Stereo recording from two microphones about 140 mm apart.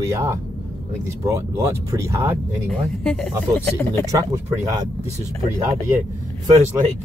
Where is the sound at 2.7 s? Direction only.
5° left (ahead or behind).